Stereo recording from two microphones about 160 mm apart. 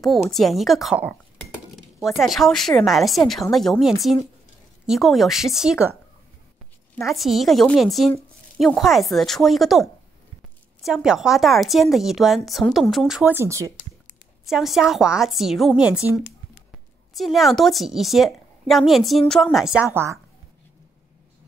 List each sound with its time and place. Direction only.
0.3 s a woman's voice: centre (ahead or behind)
7.0 s a woman's voice: centre (ahead or behind)
13.3 s speech: 15° right (ahead or behind)
14.4 s a woman's voice: centre (ahead or behind)
17.1 s a woman's voice: centre (ahead or behind)